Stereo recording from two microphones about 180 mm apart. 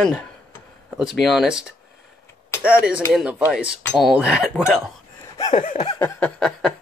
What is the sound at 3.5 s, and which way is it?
Cutlery, 5° right (ahead or behind).